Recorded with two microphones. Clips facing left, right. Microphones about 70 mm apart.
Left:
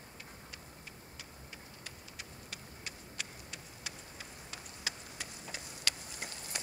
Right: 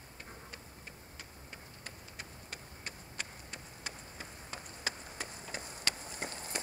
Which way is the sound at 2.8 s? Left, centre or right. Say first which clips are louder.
Right 1 dB; right.